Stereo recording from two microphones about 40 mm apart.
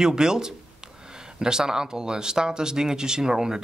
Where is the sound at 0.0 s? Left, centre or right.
Centre.